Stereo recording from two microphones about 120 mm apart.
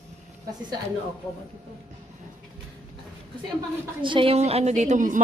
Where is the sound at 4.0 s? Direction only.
45° right (ahead or behind).